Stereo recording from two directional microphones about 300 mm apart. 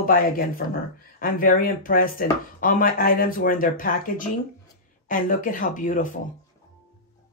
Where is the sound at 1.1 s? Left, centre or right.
Left.